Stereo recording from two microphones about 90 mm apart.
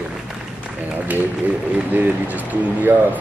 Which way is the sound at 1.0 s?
20° right (ahead or behind).